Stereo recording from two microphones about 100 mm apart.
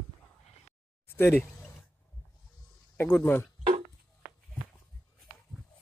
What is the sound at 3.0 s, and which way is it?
Speech, 15° left (ahead or behind).